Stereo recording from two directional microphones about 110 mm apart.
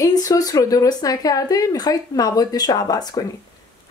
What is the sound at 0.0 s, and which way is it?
Speech, 30° left (ahead or behind).